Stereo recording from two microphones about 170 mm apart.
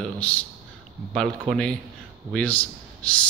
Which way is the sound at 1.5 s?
Centre (ahead or behind).